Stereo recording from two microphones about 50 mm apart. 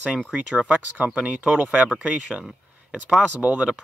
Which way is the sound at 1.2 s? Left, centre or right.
Right.